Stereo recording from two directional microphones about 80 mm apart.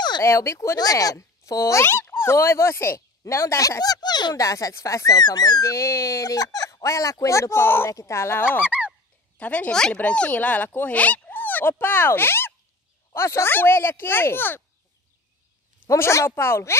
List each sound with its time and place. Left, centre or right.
0.2 s speech: left
0.7 s speech: left
4.4 s speech: left
8.6 s goose: centre
9.4 s speech: centre
15.9 s speech: left